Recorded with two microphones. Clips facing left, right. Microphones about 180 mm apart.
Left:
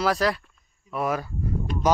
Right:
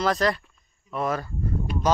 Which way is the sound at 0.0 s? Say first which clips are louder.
Even; 5° left (ahead or behind).